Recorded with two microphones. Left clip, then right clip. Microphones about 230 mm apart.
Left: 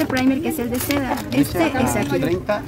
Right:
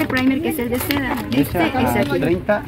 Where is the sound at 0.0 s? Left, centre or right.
Left.